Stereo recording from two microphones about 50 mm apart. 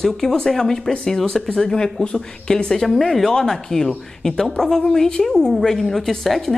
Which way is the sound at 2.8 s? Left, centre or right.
Centre.